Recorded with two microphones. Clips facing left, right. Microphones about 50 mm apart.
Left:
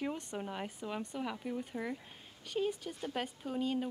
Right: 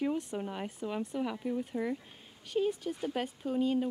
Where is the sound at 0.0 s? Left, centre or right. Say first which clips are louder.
Right 5 dB; centre.